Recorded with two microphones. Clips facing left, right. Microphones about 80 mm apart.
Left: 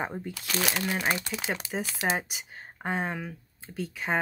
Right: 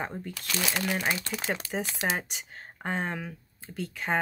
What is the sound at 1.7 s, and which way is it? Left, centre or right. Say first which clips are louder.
Speech: left 3 dB; centre.